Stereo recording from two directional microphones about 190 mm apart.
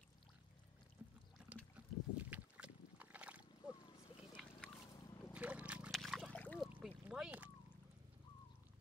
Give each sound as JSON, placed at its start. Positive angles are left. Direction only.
{"t": 1.0, "sound": "pour", "side_deg": -10}
{"t": 1.8, "sound": "boat", "side_deg": -5}
{"t": 4.2, "sound": "a sound", "side_deg": 0}
{"t": 4.6, "sound": "boat", "side_deg": 20}
{"t": 5.3, "sound": "a sound", "side_deg": -5}
{"t": 6.7, "sound": "boat", "side_deg": -5}